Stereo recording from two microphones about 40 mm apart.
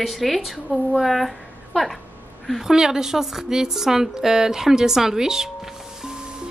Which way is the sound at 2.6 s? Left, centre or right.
Centre.